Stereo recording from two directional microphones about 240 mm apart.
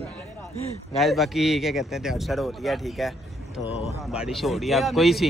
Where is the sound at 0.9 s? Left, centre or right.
Centre.